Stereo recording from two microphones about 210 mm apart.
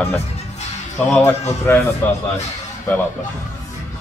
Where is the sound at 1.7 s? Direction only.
10° left (ahead or behind).